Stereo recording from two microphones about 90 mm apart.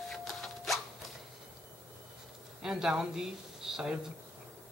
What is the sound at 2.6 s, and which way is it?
Speech, 5° right (ahead or behind).